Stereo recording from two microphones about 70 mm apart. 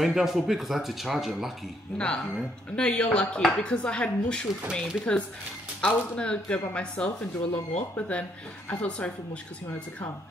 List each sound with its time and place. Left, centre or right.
0.0 s speech: centre
2.0 s speech: centre
7.2 s speech: left